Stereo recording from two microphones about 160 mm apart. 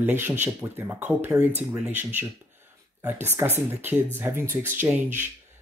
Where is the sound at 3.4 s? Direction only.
15° right (ahead or behind).